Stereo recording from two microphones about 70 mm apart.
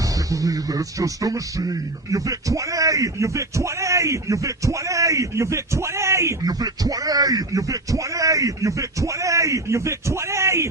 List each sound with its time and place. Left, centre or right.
0.3 s speech: right
6.4 s speech: right